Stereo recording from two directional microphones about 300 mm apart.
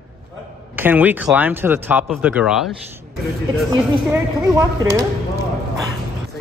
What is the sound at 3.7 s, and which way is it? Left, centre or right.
Speech, centre.